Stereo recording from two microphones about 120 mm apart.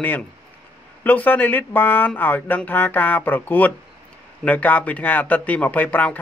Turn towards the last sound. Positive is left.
turn(degrees=15)  # may be behind; listen again after turning